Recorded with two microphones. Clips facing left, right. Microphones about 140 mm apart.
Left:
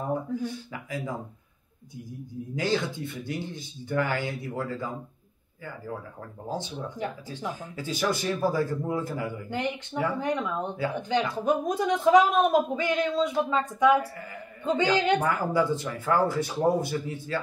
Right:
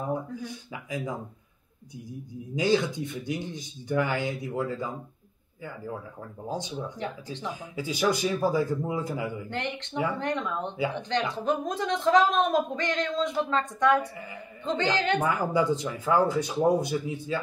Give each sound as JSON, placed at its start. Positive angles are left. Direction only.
{"t": 0.0, "sound": "speech", "side_deg": -15}
{"t": 2.5, "sound": "speech", "side_deg": -15}
{"t": 6.4, "sound": "speech", "side_deg": -15}
{"t": 10.1, "sound": "speech", "side_deg": 10}
{"t": 15.1, "sound": "speech", "side_deg": -15}